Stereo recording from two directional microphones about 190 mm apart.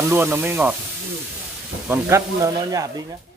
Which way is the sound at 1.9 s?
15° right (ahead or behind).